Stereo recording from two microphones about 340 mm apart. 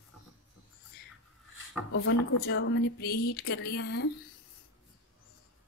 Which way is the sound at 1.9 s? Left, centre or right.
Left.